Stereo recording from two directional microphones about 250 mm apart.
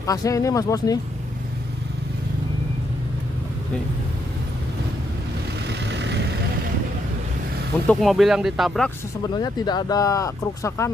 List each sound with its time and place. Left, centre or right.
0.0 s speech: centre
5.9 s vehicle: right
7.9 s speech: centre
9.3 s speech: centre